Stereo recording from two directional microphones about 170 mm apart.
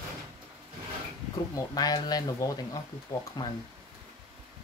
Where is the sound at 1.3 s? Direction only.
20° left (ahead or behind).